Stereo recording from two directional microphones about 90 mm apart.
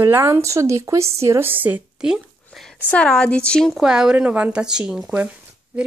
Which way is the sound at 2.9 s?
10° left (ahead or behind).